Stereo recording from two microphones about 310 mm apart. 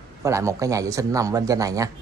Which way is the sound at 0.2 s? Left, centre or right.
Centre.